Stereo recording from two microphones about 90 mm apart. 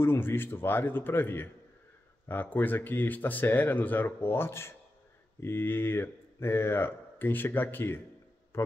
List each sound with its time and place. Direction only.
0.0 s a man's voice: 25° left (ahead or behind)